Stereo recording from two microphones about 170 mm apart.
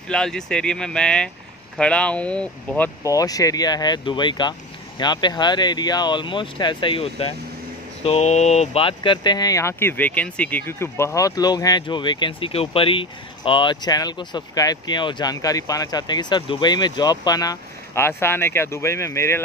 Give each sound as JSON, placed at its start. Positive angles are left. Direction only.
{"t": 0.1, "sound": "speech", "side_deg": 5}
{"t": 3.0, "sound": "speech", "side_deg": 20}